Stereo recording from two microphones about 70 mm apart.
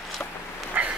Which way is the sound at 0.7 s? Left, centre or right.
Right.